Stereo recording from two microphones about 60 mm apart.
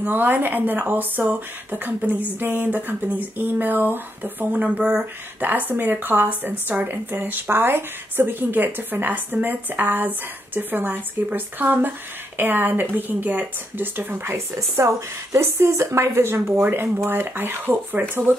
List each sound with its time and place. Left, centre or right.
0.0 s speech: right
16.6 s speech: right